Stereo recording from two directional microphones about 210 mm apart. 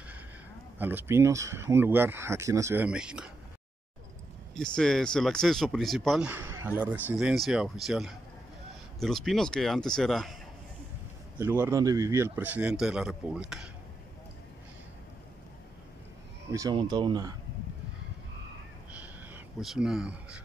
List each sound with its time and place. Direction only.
0.7 s speech: 10° right (ahead or behind)
4.6 s speech: 5° left (ahead or behind)
11.3 s speech: 10° right (ahead or behind)
16.5 s speech: 20° right (ahead or behind)
18.9 s a sound: 5° right (ahead or behind)